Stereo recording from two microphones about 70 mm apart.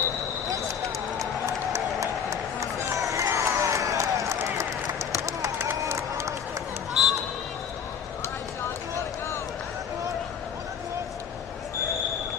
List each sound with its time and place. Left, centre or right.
1.2 s crowd: right
5.2 s run: right
5.7 s crowd: right
6.9 s run: centre